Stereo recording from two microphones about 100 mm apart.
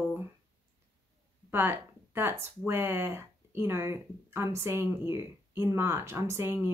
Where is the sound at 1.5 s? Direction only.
20° right (ahead or behind).